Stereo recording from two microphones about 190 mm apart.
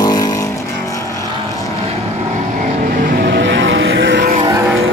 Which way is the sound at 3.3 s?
70° right (ahead or behind).